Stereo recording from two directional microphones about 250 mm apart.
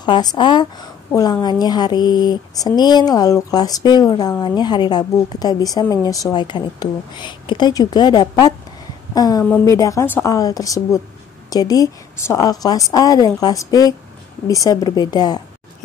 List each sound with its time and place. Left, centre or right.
0.0 s a woman's voice: centre